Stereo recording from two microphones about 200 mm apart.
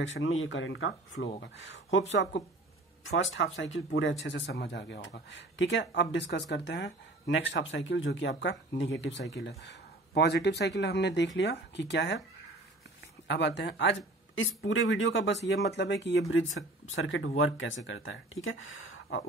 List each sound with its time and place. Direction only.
0.0 s speech: 75° left (ahead or behind)
3.2 s speech: 70° left (ahead or behind)
13.3 s speech: 60° left (ahead or behind); by 19.2 s 80° left